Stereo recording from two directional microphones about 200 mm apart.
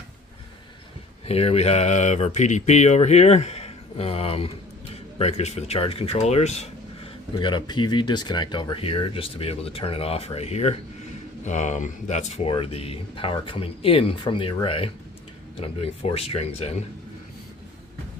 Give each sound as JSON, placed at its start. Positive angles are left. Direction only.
{"t": 1.2, "sound": "speech", "side_deg": 30}